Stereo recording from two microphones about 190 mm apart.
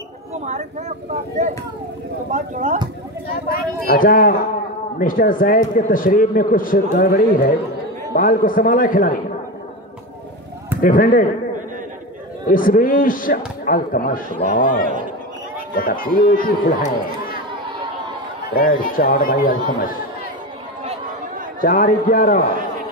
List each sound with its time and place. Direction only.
0.3 s speech: 40° right (ahead or behind)
2.3 s speech: 40° right (ahead or behind)
3.4 s a man's voice: 45° left (ahead or behind)
10.8 s a man's voice: 45° left (ahead or behind)
12.4 s a man's voice: 45° left (ahead or behind)
18.5 s a man's voice: 50° left (ahead or behind)
21.5 s a man's voice: 45° left (ahead or behind)